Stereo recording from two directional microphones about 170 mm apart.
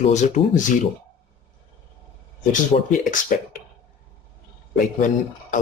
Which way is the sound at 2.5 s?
50° left (ahead or behind).